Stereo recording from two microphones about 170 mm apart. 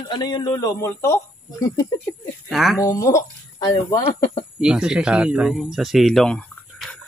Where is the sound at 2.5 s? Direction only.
Centre (ahead or behind).